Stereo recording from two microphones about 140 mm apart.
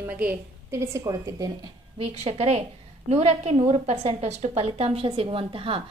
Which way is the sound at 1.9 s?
45° right (ahead or behind).